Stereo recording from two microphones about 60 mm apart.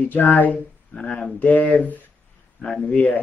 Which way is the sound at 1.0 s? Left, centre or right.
Centre.